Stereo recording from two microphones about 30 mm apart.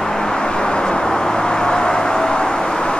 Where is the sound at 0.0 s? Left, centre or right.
Centre.